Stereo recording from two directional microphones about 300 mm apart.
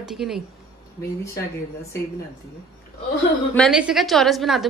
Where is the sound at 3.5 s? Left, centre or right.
Centre.